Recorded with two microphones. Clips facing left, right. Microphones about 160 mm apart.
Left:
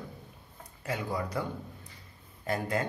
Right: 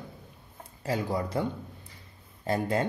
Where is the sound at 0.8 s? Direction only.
30° right (ahead or behind).